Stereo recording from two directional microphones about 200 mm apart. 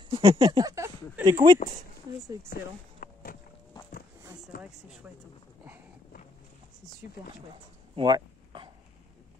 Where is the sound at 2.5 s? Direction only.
45° left (ahead or behind).